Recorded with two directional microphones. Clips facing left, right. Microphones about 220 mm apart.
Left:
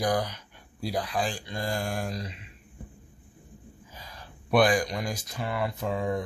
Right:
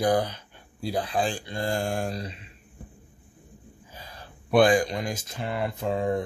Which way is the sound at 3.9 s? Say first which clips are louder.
Right 3 dB; 30° right (ahead or behind).